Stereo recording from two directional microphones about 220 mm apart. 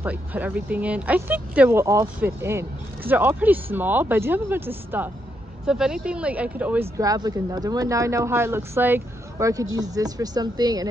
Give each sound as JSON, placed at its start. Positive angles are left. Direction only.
{"t": 0.0, "sound": "speech", "side_deg": -10}